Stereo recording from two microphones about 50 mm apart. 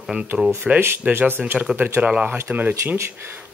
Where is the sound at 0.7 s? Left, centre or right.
Right.